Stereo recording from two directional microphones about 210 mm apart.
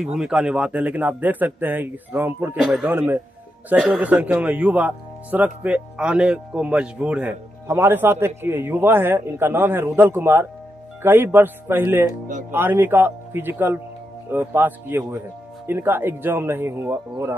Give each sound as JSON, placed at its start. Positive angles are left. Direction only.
{"t": 0.0, "sound": "speech", "side_deg": 0}